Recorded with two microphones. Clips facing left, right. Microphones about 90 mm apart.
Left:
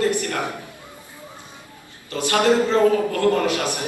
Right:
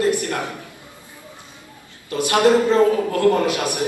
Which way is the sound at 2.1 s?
20° right (ahead or behind).